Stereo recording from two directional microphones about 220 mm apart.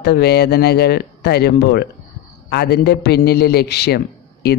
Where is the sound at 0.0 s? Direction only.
45° left (ahead or behind).